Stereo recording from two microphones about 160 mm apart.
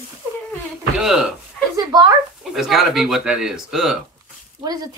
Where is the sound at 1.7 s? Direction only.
25° right (ahead or behind).